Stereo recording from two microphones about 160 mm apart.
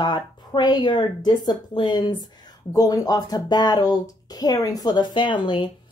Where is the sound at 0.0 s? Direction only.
30° left (ahead or behind).